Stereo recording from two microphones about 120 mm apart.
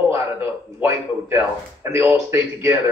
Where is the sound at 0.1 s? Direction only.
20° right (ahead or behind).